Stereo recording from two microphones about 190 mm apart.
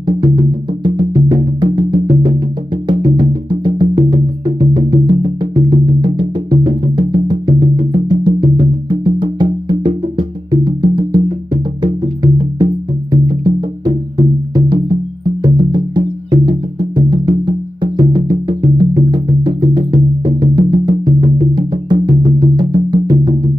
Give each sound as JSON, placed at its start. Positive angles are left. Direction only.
{"t": 0.0, "sound": "music", "side_deg": -25}
{"t": 3.8, "sound": "music", "side_deg": -40}
{"t": 4.5, "sound": "music", "side_deg": -20}
{"t": 13.1, "sound": "music", "side_deg": -20}